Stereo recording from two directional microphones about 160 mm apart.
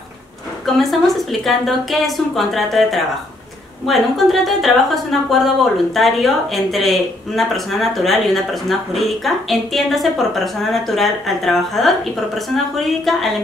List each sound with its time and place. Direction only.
0.7 s a woman's voice: centre (ahead or behind)